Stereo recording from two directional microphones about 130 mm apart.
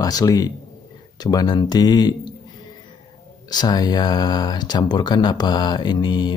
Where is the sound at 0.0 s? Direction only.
30° left (ahead or behind).